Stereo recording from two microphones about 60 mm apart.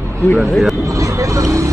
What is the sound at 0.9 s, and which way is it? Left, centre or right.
Vehicle, right.